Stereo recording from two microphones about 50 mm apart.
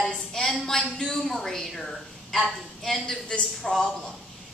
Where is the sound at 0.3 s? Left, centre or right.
Centre.